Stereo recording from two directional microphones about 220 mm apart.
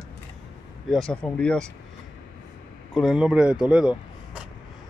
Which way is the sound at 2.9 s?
Centre (ahead or behind).